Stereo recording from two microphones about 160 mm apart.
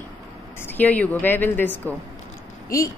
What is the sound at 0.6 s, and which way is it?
A woman's voice, 10° left (ahead or behind).